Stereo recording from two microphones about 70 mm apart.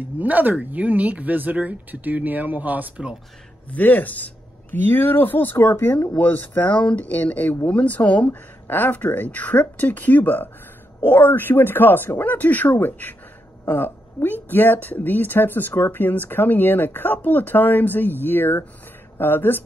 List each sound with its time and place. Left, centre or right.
0.2 s speech: right
3.7 s speech: left